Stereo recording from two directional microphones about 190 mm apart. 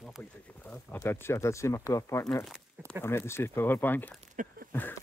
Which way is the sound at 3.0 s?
15° left (ahead or behind).